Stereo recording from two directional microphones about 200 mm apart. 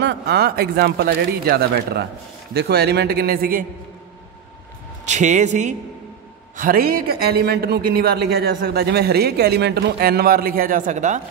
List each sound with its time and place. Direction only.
0.0 s a man's voice: 60° right (ahead or behind)
5.0 s a man's voice: 35° right (ahead or behind)